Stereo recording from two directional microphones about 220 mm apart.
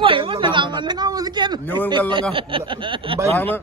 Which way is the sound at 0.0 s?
25° right (ahead or behind).